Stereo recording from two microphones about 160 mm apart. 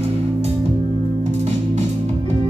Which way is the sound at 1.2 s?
45° right (ahead or behind).